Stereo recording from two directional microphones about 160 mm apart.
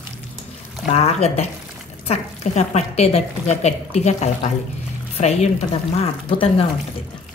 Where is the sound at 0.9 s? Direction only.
40° left (ahead or behind).